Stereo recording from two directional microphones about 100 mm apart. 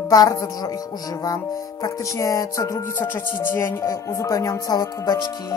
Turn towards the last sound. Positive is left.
turn(degrees=40)  # may be behind; listen again after turning